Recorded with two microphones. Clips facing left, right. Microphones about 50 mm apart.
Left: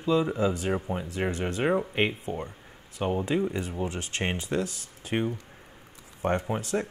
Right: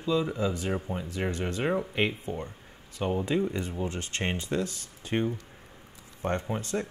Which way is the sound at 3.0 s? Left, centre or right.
Centre.